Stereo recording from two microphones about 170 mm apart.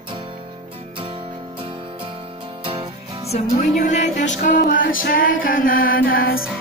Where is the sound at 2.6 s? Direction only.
30° right (ahead or behind).